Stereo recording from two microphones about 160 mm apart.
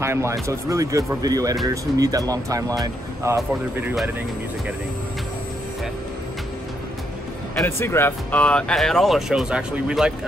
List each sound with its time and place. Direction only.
0.0 s speech: 15° right (ahead or behind)
7.6 s speech: 15° left (ahead or behind); by 10.1 s 5° right (ahead or behind)